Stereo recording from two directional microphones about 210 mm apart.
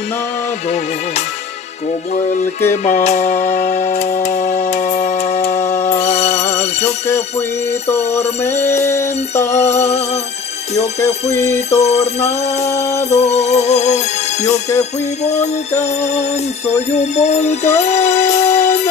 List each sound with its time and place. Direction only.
0.7 s music: 35° left (ahead or behind)
2.7 s music: 35° left (ahead or behind)
8.2 s music: 10° left (ahead or behind)
9.5 s music: 30° left (ahead or behind)
10.8 s music: 15° left (ahead or behind)
11.8 s music: 30° left (ahead or behind)